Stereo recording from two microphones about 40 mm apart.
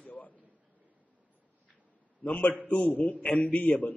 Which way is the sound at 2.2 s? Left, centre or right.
Left.